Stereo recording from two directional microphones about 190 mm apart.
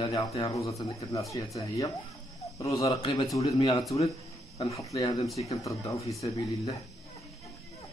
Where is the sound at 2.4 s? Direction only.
15° left (ahead or behind).